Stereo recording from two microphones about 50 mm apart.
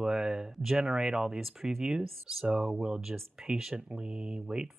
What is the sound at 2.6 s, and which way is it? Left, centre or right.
Speech, centre.